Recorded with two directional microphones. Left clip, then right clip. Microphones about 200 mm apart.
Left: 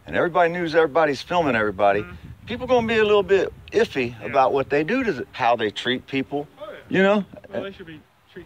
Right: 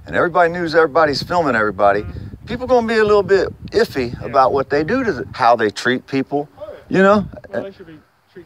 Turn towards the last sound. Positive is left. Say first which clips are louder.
# right 5 dB
turn(degrees=-25)  # may be behind; listen again after turning